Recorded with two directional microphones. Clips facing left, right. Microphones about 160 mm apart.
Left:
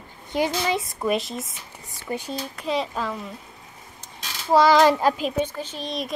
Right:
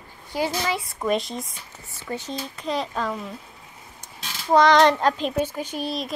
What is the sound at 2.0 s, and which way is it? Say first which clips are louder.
Speech: left 1 dB; 15° left (ahead or behind).